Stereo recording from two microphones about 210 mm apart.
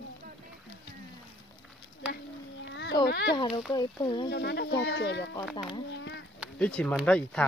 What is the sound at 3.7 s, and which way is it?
Speech, 20° left (ahead or behind).